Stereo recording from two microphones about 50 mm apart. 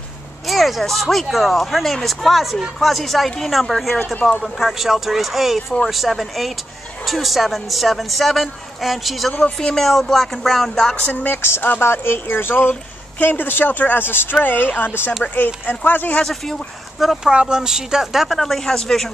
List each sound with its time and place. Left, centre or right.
0.5 s speech: centre
9.6 s speech: centre
11.8 s speech: left
13.2 s speech: left
16.3 s speech: centre
17.0 s speech: centre
17.3 s a woman's voice: centre
18.4 s speech: centre